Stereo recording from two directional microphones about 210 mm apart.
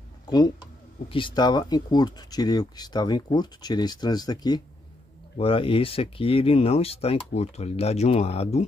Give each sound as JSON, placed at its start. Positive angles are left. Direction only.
{"t": 1.0, "sound": "speech", "side_deg": 25}